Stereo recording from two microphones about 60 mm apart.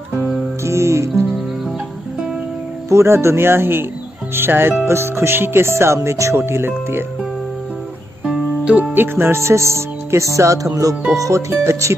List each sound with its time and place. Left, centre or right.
0.7 s music: right
2.9 s music: right
4.4 s speech: right
4.8 s music: right
8.9 s speech: right
11.2 s speech: right